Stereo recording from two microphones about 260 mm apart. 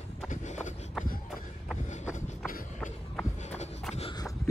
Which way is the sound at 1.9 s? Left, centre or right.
Left.